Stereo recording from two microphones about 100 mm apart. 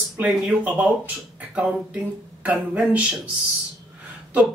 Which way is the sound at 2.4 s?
15° right (ahead or behind).